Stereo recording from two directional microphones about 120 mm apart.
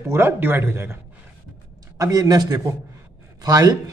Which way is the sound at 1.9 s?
30° right (ahead or behind).